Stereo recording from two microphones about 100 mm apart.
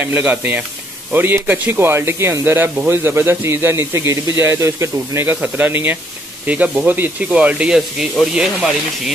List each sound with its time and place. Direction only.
0.0 s a man's voice: 15° right (ahead or behind)